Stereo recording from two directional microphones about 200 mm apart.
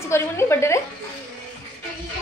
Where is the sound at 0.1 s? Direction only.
15° left (ahead or behind).